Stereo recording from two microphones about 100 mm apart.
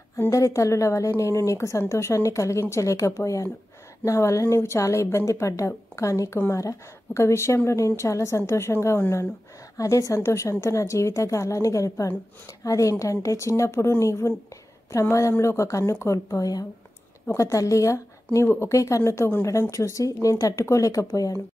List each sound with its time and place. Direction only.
0.3 s a woman's voice: 35° left (ahead or behind)